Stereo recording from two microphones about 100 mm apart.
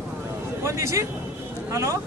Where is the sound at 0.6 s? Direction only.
30° right (ahead or behind).